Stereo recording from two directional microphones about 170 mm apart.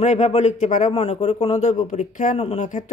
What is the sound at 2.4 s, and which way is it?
Speech, 40° left (ahead or behind).